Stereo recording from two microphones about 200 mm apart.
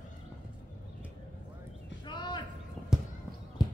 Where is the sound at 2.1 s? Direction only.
20° left (ahead or behind).